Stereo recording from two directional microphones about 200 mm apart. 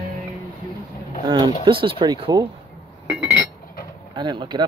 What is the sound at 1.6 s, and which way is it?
Creak, 25° right (ahead or behind).